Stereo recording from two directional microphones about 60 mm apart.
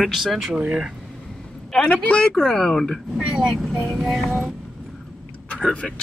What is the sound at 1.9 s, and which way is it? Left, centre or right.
Speech, left.